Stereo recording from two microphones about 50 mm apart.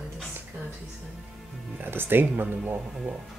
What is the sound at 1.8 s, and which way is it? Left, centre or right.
Speech, right.